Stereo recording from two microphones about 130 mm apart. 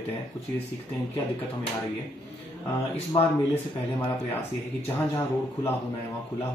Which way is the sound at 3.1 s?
35° left (ahead or behind).